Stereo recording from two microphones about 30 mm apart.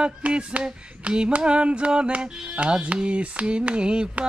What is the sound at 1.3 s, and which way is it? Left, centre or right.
Music, right.